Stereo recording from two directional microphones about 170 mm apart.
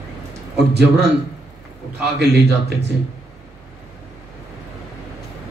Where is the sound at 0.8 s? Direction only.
80° right.